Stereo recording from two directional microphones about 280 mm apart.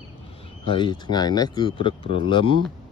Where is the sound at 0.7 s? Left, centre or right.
Centre.